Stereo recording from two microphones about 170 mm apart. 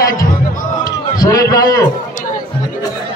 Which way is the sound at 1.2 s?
20° left (ahead or behind).